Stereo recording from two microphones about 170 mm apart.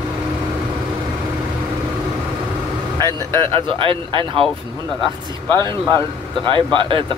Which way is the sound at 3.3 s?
30° right (ahead or behind).